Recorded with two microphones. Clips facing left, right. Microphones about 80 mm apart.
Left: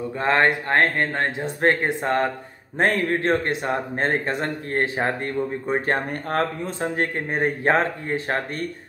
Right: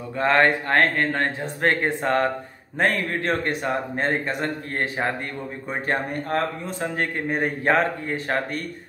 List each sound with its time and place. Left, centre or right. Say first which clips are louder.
0.2 s speech: right 1 dB; centre